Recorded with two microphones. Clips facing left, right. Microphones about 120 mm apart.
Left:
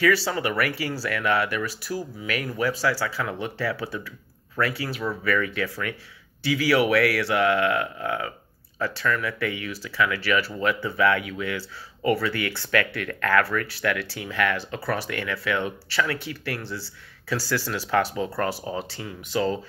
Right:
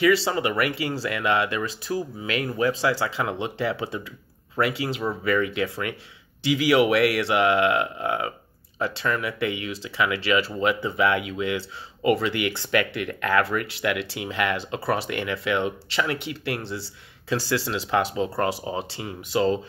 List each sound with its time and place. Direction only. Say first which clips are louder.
0.0 s speech: right 2 dB; 20° right (ahead or behind)